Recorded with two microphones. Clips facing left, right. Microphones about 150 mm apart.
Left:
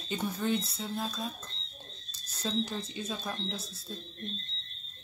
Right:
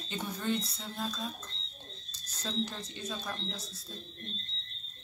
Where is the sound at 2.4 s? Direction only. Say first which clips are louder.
Left 3 dB; 10° left (ahead or behind).